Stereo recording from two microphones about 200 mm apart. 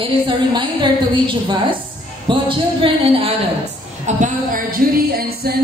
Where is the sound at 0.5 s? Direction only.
25° right (ahead or behind).